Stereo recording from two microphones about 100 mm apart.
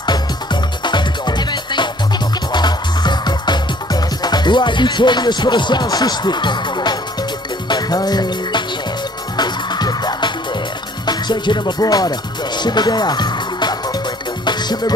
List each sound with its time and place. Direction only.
0.0 s music: 50° left (ahead or behind)